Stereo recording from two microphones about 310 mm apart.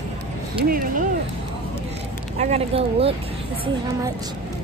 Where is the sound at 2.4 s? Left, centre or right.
Centre.